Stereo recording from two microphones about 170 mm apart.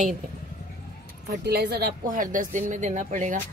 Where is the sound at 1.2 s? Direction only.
70° right (ahead or behind); by 3.4 s 50° right (ahead or behind).